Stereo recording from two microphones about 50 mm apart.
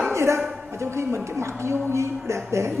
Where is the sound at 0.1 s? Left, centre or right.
Right.